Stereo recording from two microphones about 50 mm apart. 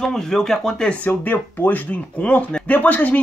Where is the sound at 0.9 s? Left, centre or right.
Left.